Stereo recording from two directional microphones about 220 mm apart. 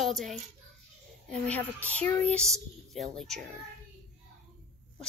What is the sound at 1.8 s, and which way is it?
A woman's voice, 5° left (ahead or behind).